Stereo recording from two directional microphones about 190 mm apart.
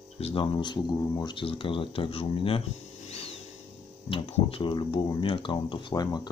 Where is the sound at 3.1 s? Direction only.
35° left (ahead or behind).